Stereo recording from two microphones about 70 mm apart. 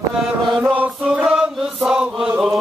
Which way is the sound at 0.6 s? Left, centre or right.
Right.